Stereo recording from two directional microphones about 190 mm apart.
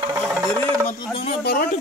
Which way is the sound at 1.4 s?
55° left (ahead or behind).